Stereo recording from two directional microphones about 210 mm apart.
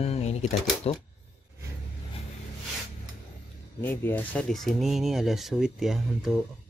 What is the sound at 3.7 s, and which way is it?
Speech, 10° left (ahead or behind).